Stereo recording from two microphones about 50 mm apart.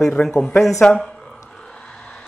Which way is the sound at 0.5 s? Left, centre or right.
Left.